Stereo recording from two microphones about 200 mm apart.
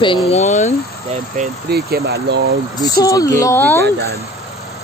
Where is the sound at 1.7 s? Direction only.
50° right (ahead or behind).